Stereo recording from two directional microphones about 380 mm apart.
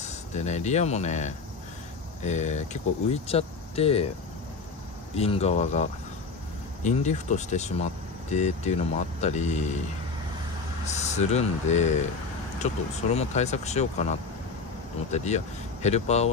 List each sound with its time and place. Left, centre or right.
0.0 s speech: centre
5.1 s speech: centre
10.9 s speech: centre
13.1 s speech: centre